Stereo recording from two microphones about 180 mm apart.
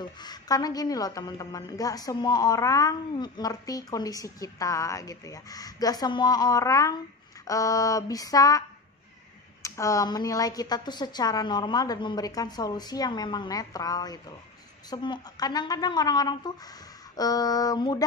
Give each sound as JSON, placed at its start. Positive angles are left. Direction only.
{"t": 0.0, "sound": "a woman's voice", "side_deg": 25}